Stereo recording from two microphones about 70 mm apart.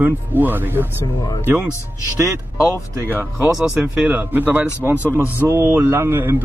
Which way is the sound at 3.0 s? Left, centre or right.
Right.